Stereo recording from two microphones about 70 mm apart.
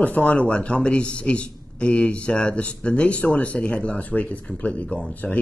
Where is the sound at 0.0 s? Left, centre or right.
Left.